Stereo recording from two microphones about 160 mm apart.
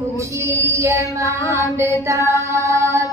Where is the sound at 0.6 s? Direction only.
20° right (ahead or behind).